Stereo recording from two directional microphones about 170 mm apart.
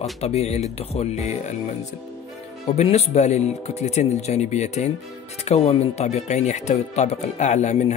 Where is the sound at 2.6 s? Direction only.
40° left (ahead or behind).